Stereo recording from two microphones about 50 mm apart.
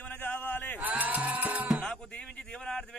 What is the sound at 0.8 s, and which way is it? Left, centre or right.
Music, right.